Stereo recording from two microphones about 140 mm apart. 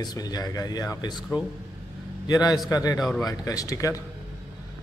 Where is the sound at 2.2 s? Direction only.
25° left (ahead or behind).